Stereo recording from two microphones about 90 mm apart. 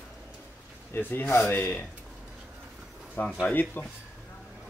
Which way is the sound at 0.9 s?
25° left (ahead or behind).